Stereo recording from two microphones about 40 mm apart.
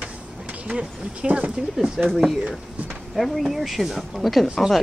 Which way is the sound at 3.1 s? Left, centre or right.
Centre.